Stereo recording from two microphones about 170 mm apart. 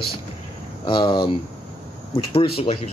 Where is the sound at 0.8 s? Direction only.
30° left (ahead or behind).